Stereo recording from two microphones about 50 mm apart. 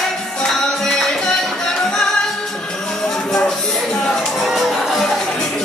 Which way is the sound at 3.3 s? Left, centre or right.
Centre.